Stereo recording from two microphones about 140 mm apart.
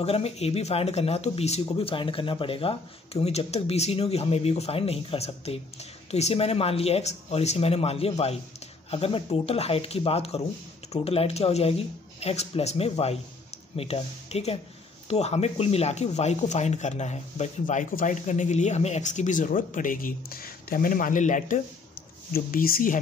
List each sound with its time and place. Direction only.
0.0 s speech: 45° left (ahead or behind); by 21.5 s 65° left (ahead or behind)
22.3 s speech: 90° left